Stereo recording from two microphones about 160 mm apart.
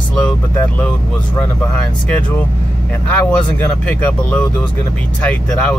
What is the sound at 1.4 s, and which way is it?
Speech, 10° left (ahead or behind).